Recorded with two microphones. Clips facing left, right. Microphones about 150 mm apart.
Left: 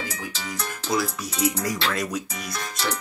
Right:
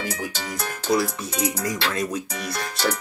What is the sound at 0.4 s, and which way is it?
Music, 40° right (ahead or behind).